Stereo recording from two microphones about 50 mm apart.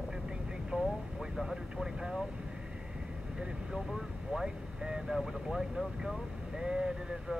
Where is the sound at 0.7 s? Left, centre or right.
Right.